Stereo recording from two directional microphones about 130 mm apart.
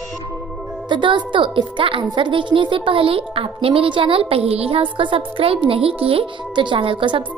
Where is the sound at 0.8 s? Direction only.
35° right (ahead or behind).